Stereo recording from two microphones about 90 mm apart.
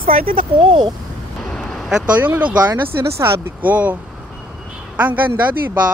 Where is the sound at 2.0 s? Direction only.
15° right (ahead or behind).